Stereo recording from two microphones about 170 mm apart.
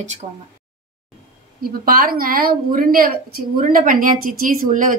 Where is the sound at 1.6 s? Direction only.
60° right (ahead or behind).